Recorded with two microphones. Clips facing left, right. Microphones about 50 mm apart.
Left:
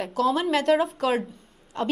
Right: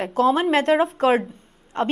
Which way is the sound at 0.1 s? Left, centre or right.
Right.